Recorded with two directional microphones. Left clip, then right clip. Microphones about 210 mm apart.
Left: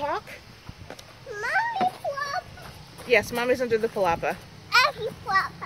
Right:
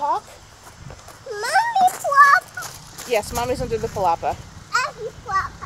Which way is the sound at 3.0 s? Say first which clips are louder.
Even; centre (ahead or behind).